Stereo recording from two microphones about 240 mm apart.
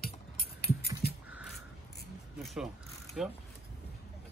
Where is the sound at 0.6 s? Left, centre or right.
Left.